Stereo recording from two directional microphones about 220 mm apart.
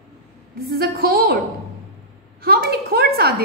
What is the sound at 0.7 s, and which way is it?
Speech, 40° right (ahead or behind).